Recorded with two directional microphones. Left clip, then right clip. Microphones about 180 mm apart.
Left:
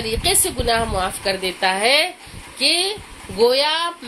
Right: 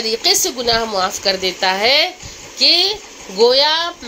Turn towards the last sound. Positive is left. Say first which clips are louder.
# right 4 dB
turn(degrees=0)  # may be behind; listen again after turning